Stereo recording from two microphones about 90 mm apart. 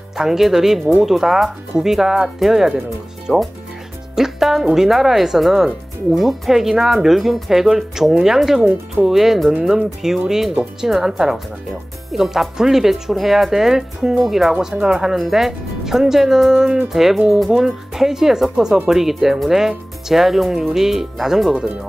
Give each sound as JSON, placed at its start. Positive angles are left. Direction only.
{"t": 0.2, "sound": "speech", "side_deg": -5}
{"t": 3.3, "sound": "speech", "side_deg": -20}
{"t": 4.1, "sound": "speech", "side_deg": -5}